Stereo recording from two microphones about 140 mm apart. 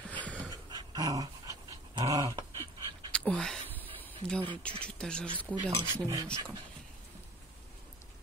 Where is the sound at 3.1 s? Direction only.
5° left (ahead or behind).